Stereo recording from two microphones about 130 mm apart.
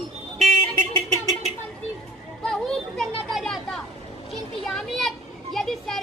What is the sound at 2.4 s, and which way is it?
Children playing, 5° left (ahead or behind).